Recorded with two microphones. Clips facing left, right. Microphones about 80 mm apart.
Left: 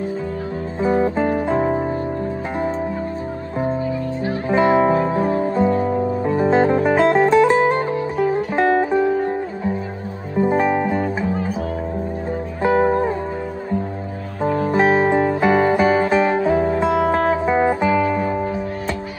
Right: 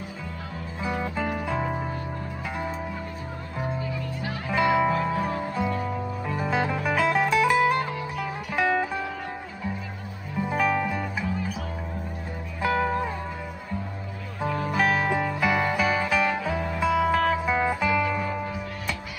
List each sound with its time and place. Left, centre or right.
0.7 s music: left
4.2 s music: left
10.3 s music: left
12.6 s music: left
14.4 s music: left